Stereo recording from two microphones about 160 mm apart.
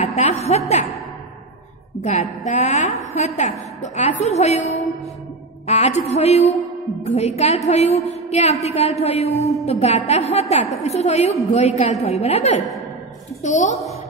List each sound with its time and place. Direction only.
0.0 s a woman's voice: 40° left (ahead or behind)
2.0 s a woman's voice: 45° left (ahead or behind)
8.1 s a sound: 45° left (ahead or behind)
8.6 s a woman's voice: 40° left (ahead or behind)